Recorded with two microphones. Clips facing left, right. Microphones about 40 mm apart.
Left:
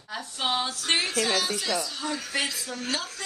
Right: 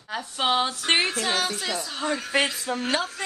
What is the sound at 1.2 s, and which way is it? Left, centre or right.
Speech, centre.